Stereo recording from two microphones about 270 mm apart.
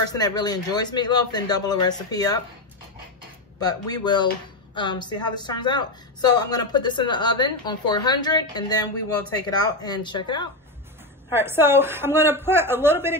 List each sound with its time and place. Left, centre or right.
0.0 s a man's voice: centre
3.5 s a man's voice: centre
11.3 s a woman's voice: centre